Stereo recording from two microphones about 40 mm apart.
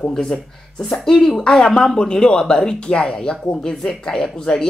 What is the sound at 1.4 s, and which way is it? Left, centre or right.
Speech, left.